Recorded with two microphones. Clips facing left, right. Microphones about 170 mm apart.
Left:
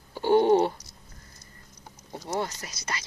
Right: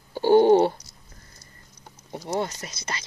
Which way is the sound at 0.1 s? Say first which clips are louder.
Right 4 dB; 30° right (ahead or behind).